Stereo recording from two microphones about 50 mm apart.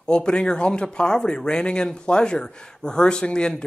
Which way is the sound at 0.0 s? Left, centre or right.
Centre.